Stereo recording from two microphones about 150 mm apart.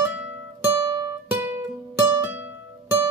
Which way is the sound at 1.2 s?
10° right (ahead or behind).